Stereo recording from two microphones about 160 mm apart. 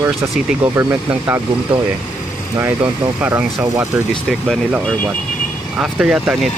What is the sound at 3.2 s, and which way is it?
Speech, 10° right (ahead or behind).